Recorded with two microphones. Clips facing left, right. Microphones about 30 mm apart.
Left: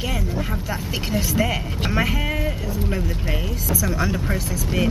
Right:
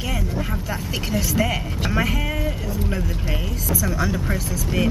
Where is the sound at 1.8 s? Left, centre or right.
Centre.